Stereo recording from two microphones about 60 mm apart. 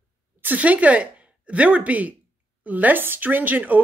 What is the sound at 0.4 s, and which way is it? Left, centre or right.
Speech, right.